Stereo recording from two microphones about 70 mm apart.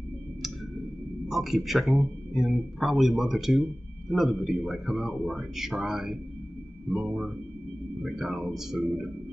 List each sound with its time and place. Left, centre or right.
1.3 s speech: centre